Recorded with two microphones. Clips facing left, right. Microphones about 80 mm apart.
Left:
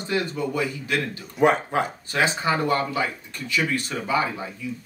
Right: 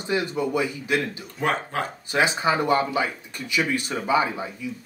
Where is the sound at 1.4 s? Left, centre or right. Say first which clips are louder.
Left 5 dB; centre.